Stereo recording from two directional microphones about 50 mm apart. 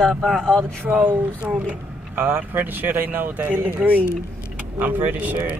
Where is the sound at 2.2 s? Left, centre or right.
Right.